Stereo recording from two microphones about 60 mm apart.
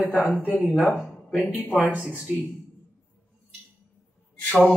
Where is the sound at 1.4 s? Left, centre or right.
Right.